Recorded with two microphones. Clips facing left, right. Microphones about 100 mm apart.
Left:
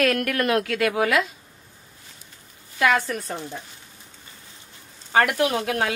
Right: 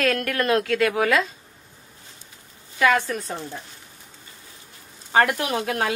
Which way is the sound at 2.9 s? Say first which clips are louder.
Right 1 dB; 25° right (ahead or behind).